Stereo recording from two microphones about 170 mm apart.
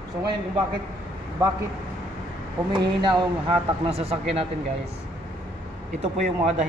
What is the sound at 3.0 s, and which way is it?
Speech, 25° right (ahead or behind).